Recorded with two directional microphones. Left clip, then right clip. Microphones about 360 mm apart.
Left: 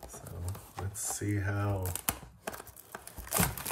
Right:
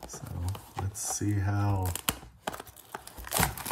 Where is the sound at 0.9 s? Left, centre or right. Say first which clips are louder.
Right 3 dB; centre.